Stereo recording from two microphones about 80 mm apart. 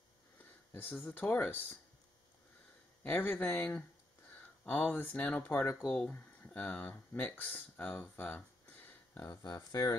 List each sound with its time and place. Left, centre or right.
0.7 s speech: left
3.0 s speech: centre
4.8 s speech: left
8.8 s a sound: left
9.3 s speech: left